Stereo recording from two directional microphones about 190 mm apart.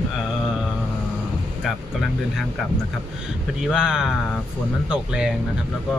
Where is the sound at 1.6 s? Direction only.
Centre (ahead or behind).